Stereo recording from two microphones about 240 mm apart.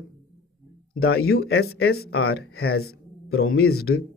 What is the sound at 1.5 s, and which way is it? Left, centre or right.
Speech, left.